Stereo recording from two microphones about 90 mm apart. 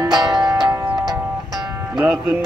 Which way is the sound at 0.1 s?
50° right (ahead or behind).